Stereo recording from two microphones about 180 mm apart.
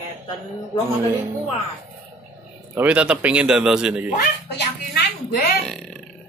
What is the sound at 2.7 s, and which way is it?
A man's voice, 5° right (ahead or behind).